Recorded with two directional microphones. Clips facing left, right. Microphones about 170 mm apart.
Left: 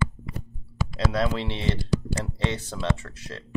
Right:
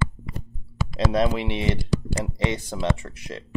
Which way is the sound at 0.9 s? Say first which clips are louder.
Right 4 dB; 20° right (ahead or behind).